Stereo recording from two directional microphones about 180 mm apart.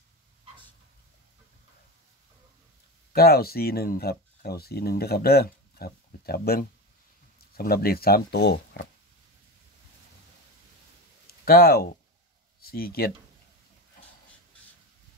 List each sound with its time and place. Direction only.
3.1 s speech: 60° left (ahead or behind)
11.2 s speech: 60° left (ahead or behind)